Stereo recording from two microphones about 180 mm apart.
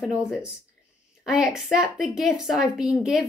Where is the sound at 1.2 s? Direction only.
5° right (ahead or behind).